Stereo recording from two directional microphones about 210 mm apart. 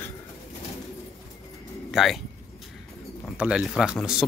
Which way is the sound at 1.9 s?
Centre (ahead or behind).